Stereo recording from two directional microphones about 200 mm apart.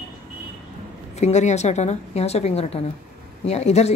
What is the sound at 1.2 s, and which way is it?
Speech, 35° left (ahead or behind).